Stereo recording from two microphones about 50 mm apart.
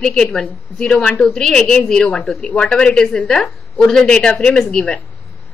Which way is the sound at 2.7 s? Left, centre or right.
Centre.